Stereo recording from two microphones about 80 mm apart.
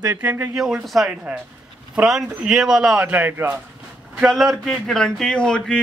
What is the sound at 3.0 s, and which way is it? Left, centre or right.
Speech, right.